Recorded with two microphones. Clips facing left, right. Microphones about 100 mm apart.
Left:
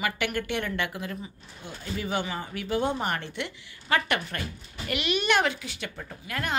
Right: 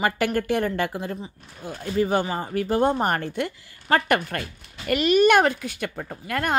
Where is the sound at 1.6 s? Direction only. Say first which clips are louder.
Right 9 dB; 45° right (ahead or behind).